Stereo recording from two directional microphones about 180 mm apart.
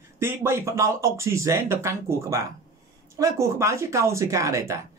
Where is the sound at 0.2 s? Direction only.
15° right (ahead or behind).